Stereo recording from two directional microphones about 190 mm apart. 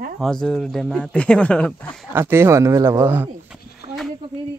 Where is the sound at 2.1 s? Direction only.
10° right (ahead or behind).